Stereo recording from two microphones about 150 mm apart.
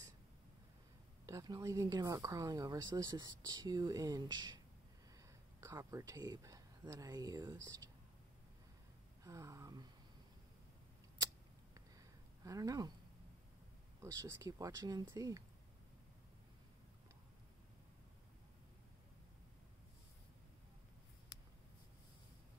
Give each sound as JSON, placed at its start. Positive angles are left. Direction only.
{"t": 1.2, "sound": "speech", "side_deg": -25}
{"t": 5.6, "sound": "speech", "side_deg": -20}
{"t": 9.2, "sound": "speech", "side_deg": -20}
{"t": 12.4, "sound": "speech", "side_deg": -25}
{"t": 14.2, "sound": "speech", "side_deg": -20}